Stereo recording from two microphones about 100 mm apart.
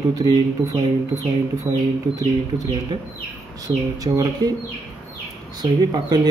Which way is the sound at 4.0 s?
40° right (ahead or behind).